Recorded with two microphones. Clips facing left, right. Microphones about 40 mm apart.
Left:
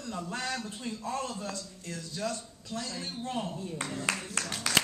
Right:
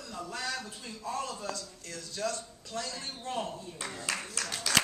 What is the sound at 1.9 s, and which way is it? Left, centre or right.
Speech, centre.